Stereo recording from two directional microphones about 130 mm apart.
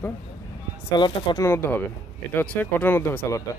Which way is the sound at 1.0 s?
35° left (ahead or behind).